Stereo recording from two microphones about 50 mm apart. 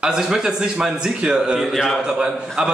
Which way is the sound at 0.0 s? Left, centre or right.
Centre.